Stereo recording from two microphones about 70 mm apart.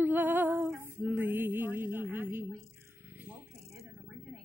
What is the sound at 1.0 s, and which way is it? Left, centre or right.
Music, right.